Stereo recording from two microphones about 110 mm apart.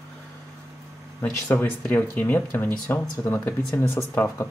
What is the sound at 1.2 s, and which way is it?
Speech, 15° left (ahead or behind).